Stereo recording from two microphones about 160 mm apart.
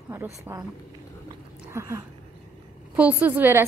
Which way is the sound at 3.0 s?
10° right (ahead or behind).